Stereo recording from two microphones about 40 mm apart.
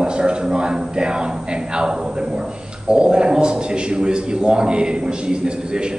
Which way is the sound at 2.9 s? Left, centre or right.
Right.